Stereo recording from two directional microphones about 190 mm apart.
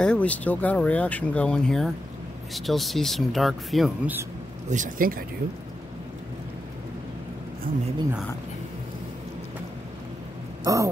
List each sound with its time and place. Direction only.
0.0 s speech: 5° left (ahead or behind)
4.6 s speech: 45° right (ahead or behind)
7.7 s speech: 50° right (ahead or behind)
10.6 s a sound: 15° right (ahead or behind)